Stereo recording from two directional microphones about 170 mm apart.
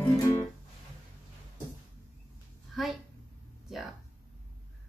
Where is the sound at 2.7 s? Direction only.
Centre (ahead or behind).